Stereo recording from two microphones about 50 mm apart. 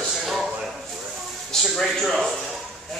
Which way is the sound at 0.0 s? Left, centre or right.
Centre.